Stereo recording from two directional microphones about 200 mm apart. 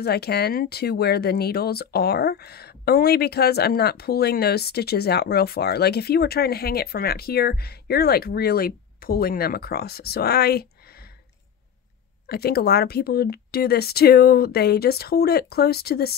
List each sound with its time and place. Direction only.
0.0 s speech: 55° left (ahead or behind)
12.3 s speech: 50° left (ahead or behind)